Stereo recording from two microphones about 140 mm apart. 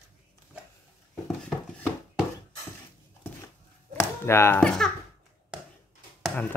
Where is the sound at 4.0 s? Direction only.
20° left (ahead or behind).